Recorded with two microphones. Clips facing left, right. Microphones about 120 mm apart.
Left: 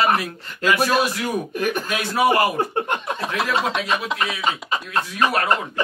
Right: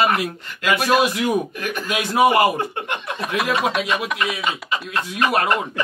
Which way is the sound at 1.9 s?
20° right (ahead or behind).